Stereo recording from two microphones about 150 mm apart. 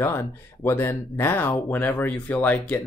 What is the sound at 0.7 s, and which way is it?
Speech, 15° left (ahead or behind).